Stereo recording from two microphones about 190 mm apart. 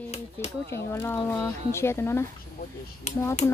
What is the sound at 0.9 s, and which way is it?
Speech, 15° left (ahead or behind).